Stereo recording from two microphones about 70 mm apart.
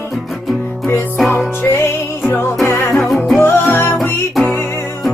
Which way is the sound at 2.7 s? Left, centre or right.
Left.